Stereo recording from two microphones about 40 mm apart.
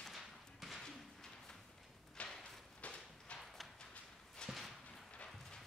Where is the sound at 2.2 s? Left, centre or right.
Left.